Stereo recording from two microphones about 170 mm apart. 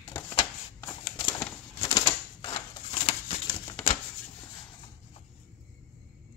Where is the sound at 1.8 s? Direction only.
25° left (ahead or behind).